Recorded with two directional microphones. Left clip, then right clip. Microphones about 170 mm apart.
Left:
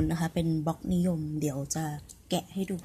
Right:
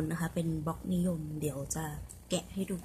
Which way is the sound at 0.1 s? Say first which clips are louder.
Left 5 dB; 25° left (ahead or behind).